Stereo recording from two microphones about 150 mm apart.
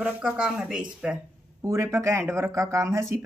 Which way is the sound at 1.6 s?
20° right (ahead or behind).